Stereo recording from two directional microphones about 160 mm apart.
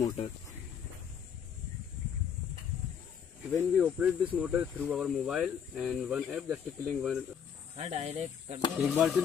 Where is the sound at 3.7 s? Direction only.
5° right (ahead or behind).